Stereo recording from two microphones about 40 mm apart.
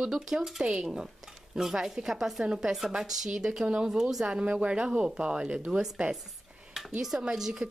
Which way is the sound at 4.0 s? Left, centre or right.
Centre.